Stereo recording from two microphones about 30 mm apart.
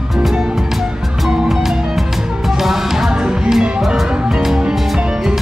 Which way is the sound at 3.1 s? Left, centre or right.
Right.